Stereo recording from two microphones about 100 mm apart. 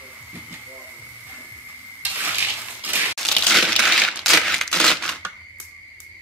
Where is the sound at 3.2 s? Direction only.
5° left (ahead or behind).